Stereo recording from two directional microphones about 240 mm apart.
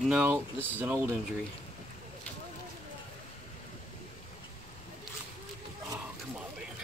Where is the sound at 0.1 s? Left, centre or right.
Centre.